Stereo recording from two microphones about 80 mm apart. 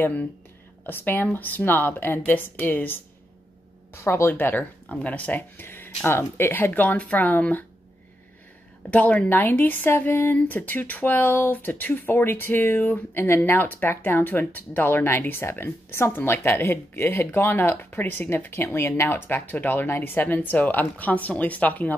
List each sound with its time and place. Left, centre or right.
0.0 s speech: centre
8.9 s speech: centre